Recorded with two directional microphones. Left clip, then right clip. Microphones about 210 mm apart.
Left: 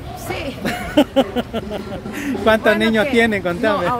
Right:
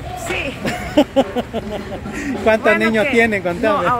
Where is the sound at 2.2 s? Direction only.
5° left (ahead or behind).